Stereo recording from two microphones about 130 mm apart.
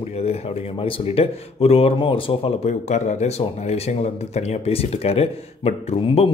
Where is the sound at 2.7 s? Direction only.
65° left (ahead or behind).